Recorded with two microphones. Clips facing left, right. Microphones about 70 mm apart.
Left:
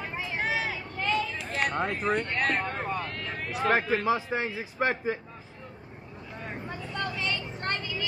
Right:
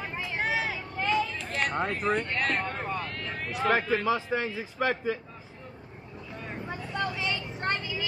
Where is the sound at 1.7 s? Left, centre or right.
Centre.